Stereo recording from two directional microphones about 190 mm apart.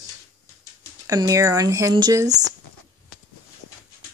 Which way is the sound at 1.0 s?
20° right (ahead or behind).